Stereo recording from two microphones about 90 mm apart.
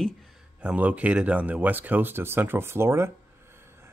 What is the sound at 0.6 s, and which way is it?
Speech, 15° right (ahead or behind).